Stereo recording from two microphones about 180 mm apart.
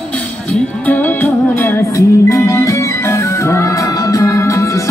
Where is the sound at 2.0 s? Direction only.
15° left (ahead or behind).